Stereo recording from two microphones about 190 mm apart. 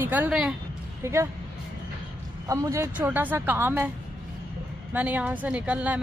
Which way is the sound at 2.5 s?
15° right (ahead or behind).